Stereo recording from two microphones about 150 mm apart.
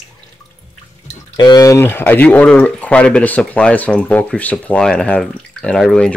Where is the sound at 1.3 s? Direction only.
25° left (ahead or behind).